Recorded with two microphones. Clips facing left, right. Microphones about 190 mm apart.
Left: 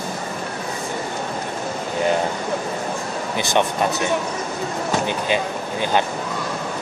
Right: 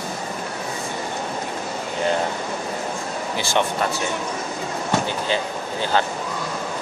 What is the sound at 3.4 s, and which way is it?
Speech, 20° left (ahead or behind).